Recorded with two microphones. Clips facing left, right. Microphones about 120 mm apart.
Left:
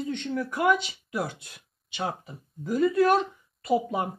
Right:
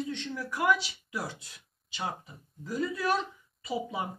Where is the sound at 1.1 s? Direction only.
60° left (ahead or behind).